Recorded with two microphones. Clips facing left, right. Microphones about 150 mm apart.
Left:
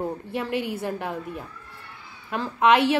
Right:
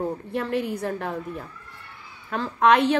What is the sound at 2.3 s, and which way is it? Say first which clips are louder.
Speech: even; 5° left (ahead or behind).